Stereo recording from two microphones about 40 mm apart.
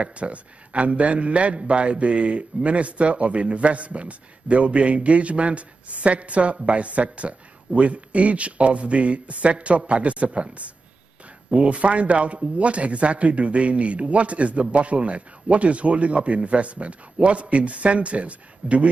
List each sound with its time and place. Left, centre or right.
0.0 s a man's voice: right